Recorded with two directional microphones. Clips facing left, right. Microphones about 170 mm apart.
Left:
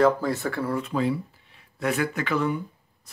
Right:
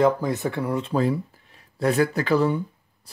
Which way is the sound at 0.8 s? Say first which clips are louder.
Right 3 dB; 40° right (ahead or behind).